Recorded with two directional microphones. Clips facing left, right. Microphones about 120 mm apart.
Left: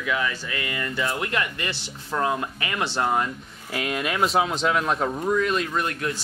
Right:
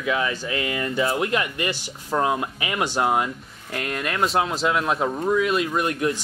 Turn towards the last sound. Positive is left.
turn(degrees=-10)  # may be behind; listen again after turning